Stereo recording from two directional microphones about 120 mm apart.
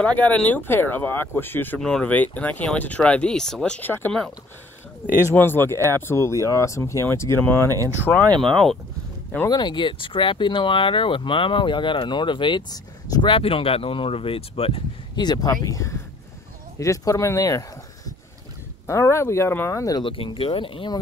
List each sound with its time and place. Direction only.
0.0 s speech: 10° left (ahead or behind)
1.8 s speech: 5° left (ahead or behind)
5.3 s speech: 15° left (ahead or behind)
7.7 s speech: 30° right (ahead or behind)
8.4 s speech: centre (ahead or behind)
9.5 s speech: 40° left (ahead or behind)
13.3 s speech: 50° left (ahead or behind)
15.1 s speech: 35° left (ahead or behind)
20.0 s speech: 45° left (ahead or behind)